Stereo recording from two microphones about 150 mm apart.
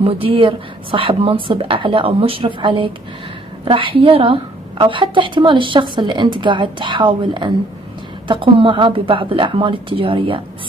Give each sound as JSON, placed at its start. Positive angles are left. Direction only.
{"t": 0.0, "sound": "a woman's voice", "side_deg": -35}